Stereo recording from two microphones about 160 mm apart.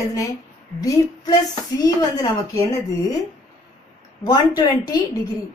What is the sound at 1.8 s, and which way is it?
Speech, 20° left (ahead or behind).